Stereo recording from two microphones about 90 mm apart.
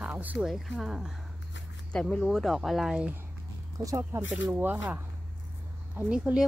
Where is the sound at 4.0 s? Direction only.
25° right (ahead or behind).